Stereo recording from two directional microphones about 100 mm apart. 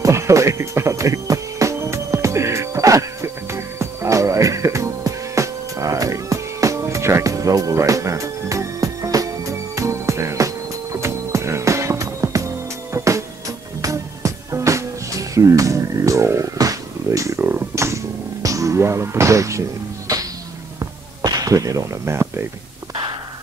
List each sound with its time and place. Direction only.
0.0 s music: 30° right (ahead or behind)
20.8 s music: 40° right (ahead or behind)